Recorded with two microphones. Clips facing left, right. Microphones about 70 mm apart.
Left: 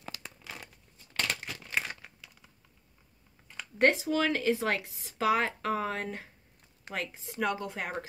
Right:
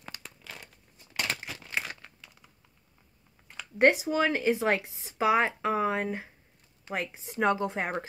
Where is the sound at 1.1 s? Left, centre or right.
Centre.